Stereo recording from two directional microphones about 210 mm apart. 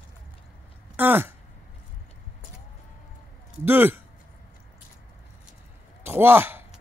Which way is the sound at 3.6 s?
10° right (ahead or behind).